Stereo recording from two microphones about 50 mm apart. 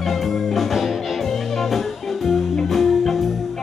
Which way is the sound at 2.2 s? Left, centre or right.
Centre.